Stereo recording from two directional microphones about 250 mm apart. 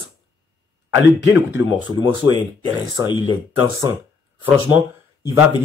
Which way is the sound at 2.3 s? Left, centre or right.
Centre.